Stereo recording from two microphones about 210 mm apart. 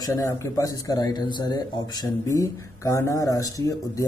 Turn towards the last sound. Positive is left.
turn(degrees=15)  # may be behind; listen again after turning